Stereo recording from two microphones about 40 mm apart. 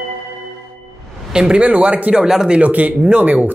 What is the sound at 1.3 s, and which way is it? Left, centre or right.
Speech, right.